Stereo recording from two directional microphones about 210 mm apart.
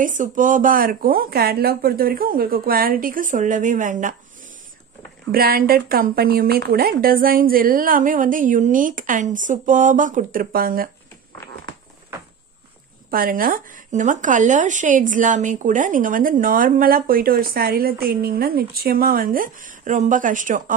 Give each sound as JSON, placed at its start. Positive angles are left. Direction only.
{"t": 0.0, "sound": "a woman's voice", "side_deg": -40}
{"t": 5.3, "sound": "a woman's voice", "side_deg": -45}
{"t": 13.1, "sound": "speech", "side_deg": -45}